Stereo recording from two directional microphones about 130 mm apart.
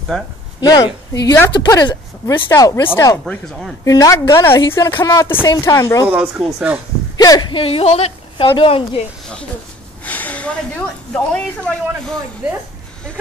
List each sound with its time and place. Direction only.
0.1 s speech: 5° left (ahead or behind)
0.6 s speech: 35° left (ahead or behind)
2.5 s a woman's voice: 20° left (ahead or behind)
3.3 s speech: centre (ahead or behind)
3.8 s a woman's voice: 25° left (ahead or behind)
6.0 s speech: 10° right (ahead or behind)
7.2 s speech: 30° left (ahead or behind)
10.0 s a sound: 10° left (ahead or behind)
11.3 s speech: 5° left (ahead or behind)